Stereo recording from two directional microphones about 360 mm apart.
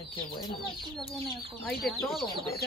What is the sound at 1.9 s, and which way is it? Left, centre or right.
Speech, centre.